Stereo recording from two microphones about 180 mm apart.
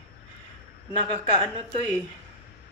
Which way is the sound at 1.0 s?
25° right (ahead or behind).